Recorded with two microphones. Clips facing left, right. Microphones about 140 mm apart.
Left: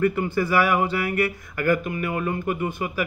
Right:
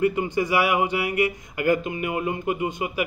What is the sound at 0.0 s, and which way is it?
A man's voice, 15° right (ahead or behind).